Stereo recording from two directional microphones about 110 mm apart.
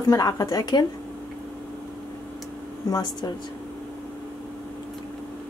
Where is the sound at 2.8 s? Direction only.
35° left (ahead or behind).